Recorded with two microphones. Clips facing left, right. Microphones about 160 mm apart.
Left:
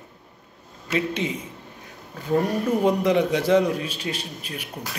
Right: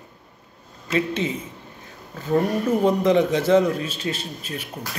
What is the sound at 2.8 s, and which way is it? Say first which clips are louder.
A man's voice: right 2 dB; 10° left (ahead or behind).